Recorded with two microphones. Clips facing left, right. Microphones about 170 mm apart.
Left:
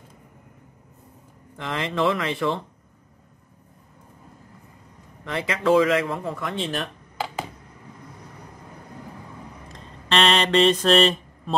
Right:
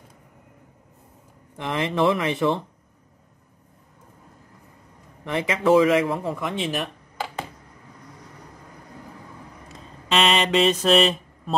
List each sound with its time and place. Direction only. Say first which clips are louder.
1.6 s speech: right 2 dB; 15° right (ahead or behind)
5.2 s speech: right 2 dB; 20° right (ahead or behind)
9.7 s mantra: even; 5° right (ahead or behind)